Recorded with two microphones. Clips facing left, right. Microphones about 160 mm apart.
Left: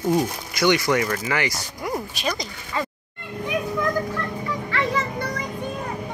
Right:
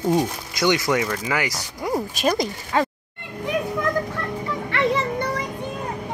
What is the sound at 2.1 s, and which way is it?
Speech, 45° right (ahead or behind).